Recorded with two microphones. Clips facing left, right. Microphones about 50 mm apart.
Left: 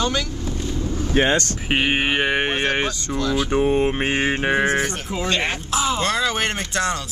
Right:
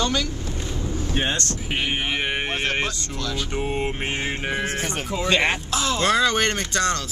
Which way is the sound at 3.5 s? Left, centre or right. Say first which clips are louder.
Left 8 dB; left.